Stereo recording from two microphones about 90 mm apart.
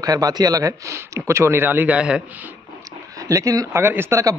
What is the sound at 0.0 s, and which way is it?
A man's voice, 45° right (ahead or behind).